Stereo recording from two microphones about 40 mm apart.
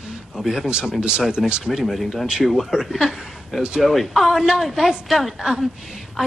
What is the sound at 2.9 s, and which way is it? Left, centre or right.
Speech, centre.